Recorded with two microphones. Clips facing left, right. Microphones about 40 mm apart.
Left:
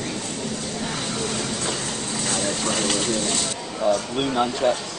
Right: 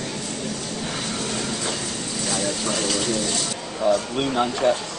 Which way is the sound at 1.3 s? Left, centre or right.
Centre.